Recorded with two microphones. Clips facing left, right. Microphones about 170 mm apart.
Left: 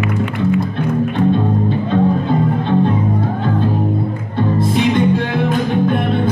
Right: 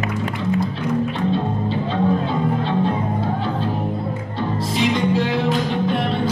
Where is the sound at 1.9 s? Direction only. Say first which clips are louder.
Left 5 dB; 55° left (ahead or behind).